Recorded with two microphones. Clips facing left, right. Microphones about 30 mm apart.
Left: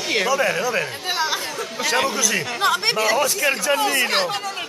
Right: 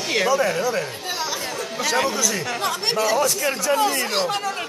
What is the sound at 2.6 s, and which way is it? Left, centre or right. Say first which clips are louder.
Speech: left 3 dB; left.